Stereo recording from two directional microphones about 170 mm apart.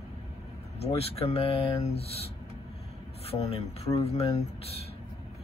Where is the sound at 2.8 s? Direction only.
35° left (ahead or behind).